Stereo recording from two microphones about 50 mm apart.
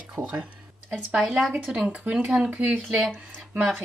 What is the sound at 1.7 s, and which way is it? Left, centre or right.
Speech, centre.